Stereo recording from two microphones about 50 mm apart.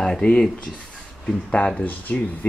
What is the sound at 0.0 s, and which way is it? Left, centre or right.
Speech, centre.